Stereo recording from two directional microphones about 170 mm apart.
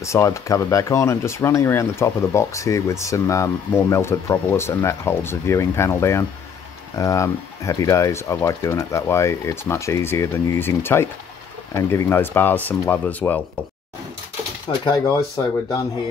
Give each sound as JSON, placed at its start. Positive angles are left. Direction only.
{"t": 0.0, "sound": "speech", "side_deg": 15}
{"t": 14.7, "sound": "speech", "side_deg": 30}